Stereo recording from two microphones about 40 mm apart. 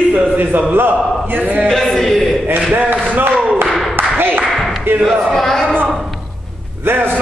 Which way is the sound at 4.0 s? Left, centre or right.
Right.